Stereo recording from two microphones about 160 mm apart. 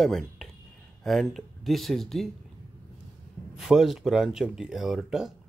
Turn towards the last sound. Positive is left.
turn(degrees=-5)  # may be behind; listen again after turning